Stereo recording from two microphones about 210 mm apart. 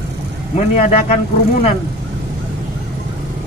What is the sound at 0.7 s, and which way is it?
Speech, 35° left (ahead or behind).